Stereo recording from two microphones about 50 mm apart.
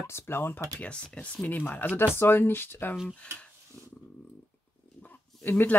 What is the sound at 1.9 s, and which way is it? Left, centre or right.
Speech, left.